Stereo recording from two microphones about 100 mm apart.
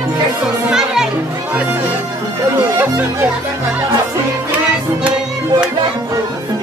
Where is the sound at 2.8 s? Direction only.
20° right (ahead or behind).